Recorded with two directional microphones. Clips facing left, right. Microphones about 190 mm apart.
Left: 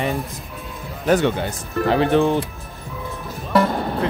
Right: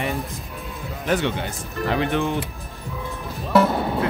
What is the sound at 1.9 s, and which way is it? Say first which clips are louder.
Speech: left 6 dB; 35° left (ahead or behind).